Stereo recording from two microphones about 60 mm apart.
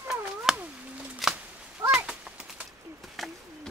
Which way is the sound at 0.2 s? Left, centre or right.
Centre.